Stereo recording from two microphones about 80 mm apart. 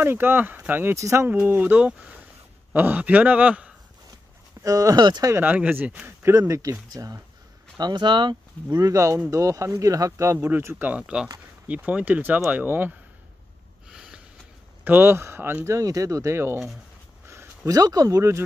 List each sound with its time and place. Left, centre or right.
0.0 s a man's voice: right
0.9 s speech: right
1.2 s a man's voice: right
4.6 s speech: right
5.4 s a man's voice: centre
6.0 s speech: right
7.7 s speech: right
8.6 s speech: right
10.5 s a man's voice: right
10.9 s a man's voice: centre
13.8 s snort: centre
14.9 s speech: right
17.6 s speech: right